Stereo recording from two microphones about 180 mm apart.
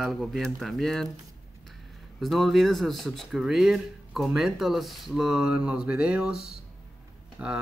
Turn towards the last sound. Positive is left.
turn(degrees=-5)  # may be behind; listen again after turning